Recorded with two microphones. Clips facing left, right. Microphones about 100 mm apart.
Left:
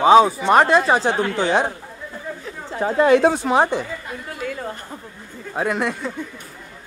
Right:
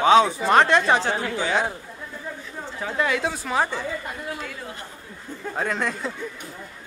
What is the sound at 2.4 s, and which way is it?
Speech, 40° left (ahead or behind).